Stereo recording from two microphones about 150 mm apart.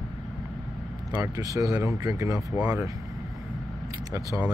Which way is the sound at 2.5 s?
10° right (ahead or behind).